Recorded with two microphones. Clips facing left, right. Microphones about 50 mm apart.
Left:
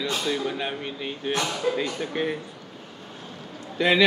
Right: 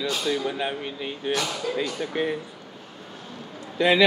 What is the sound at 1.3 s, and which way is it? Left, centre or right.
Speech, left.